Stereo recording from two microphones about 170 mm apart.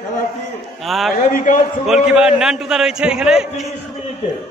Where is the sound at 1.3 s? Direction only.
50° left (ahead or behind).